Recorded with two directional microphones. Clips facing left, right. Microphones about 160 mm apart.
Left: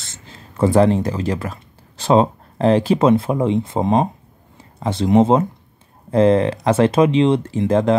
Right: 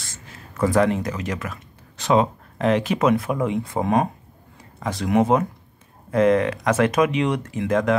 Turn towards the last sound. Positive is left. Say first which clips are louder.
# left 4 dB
turn(degrees=30)  # may be behind; listen again after turning